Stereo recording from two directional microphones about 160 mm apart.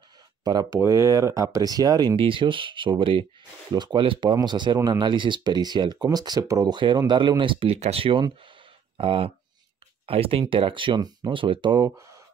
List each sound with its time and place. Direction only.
0.4 s speech: 25° right (ahead or behind)